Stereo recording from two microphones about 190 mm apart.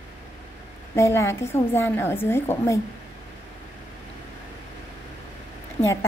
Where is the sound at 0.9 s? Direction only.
15° left (ahead or behind).